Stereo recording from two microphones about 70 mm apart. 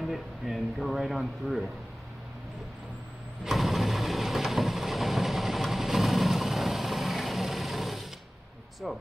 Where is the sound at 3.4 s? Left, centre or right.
Centre.